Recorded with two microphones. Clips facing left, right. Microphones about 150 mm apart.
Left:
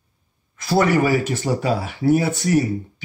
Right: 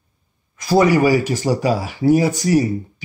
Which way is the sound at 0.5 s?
15° right (ahead or behind).